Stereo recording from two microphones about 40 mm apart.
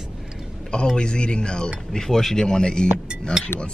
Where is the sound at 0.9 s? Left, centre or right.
Left.